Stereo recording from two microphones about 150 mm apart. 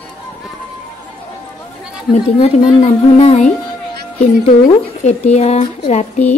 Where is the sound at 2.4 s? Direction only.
40° left (ahead or behind).